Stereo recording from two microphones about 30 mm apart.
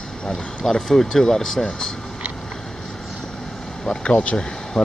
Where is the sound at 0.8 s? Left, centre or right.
Centre.